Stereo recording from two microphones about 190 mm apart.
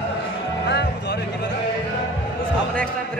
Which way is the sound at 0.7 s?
65° left (ahead or behind).